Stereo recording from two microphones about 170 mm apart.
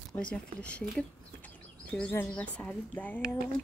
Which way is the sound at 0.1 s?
5° left (ahead or behind).